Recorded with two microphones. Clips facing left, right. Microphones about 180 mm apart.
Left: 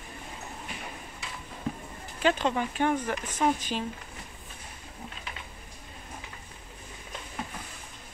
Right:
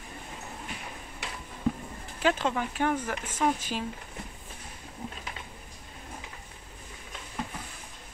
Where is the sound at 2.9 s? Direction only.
10° left (ahead or behind).